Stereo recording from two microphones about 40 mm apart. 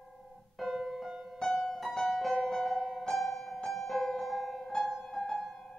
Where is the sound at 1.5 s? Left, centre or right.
Centre.